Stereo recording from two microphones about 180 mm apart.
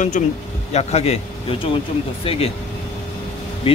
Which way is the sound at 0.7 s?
35° left (ahead or behind).